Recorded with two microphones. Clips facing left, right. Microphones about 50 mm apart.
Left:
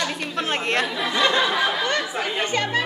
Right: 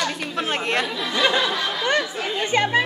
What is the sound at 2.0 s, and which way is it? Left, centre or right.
Chatter, centre.